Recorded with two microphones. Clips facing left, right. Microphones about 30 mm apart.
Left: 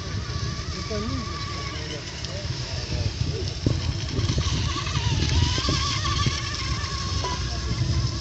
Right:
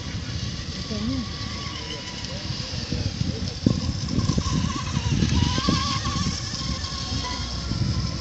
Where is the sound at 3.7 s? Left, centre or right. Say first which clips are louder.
Right 3 dB; left.